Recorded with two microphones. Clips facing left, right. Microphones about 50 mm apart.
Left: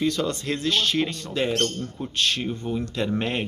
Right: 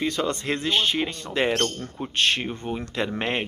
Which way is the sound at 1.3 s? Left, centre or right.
Right.